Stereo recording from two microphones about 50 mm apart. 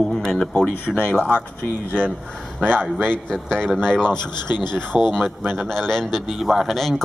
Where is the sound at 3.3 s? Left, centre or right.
Centre.